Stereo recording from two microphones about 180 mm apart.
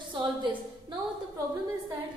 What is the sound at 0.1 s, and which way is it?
Speech, 25° right (ahead or behind).